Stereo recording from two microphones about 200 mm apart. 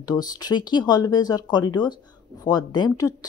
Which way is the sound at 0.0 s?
20° left (ahead or behind).